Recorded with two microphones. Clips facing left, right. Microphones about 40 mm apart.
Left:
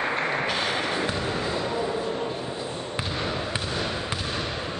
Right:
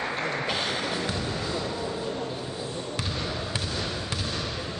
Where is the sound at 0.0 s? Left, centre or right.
Left.